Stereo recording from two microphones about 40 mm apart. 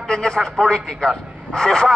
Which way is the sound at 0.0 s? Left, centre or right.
Centre.